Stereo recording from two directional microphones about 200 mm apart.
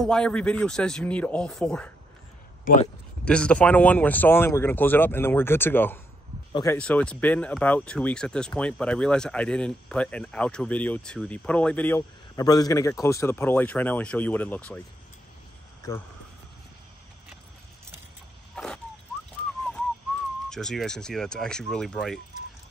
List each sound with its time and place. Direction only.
0.0 s speech: 5° left (ahead or behind)
3.3 s speech: 5° left (ahead or behind)
15.8 s speech: 15° left (ahead or behind)
18.5 s a sound: 5° left (ahead or behind)
20.4 s speech: centre (ahead or behind)